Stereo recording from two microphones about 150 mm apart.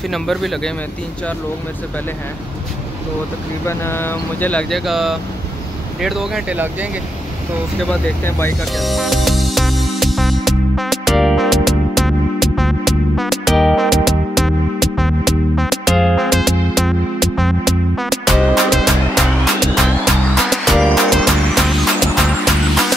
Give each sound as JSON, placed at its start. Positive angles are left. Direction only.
{"t": 0.1, "sound": "speech", "side_deg": 0}
{"t": 3.6, "sound": "speech", "side_deg": 15}
{"t": 8.2, "sound": "speech", "side_deg": 15}
{"t": 8.7, "sound": "music", "side_deg": 0}